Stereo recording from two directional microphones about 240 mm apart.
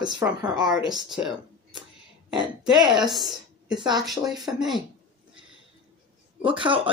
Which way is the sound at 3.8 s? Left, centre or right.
Centre.